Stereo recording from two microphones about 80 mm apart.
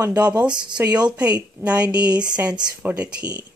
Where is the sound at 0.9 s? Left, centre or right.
Right.